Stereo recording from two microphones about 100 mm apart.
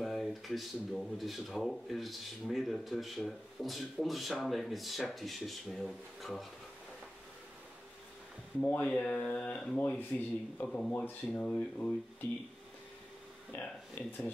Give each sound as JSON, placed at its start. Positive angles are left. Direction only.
{"t": 0.0, "sound": "speech", "side_deg": 0}
{"t": 8.5, "sound": "speech", "side_deg": 15}
{"t": 9.8, "sound": "speech", "side_deg": 15}
{"t": 14.0, "sound": "speech", "side_deg": 20}